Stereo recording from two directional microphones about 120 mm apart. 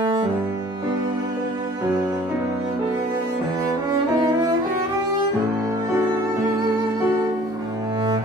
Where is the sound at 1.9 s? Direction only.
35° right (ahead or behind).